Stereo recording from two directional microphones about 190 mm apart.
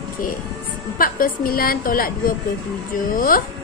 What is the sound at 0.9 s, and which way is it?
A woman's voice, 50° left (ahead or behind).